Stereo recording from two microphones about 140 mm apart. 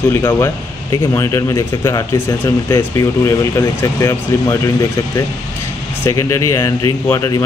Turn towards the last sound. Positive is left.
turn(degrees=20)  # may be behind; listen again after turning